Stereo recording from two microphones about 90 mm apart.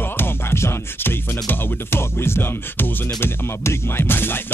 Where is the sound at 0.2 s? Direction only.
25° left (ahead or behind).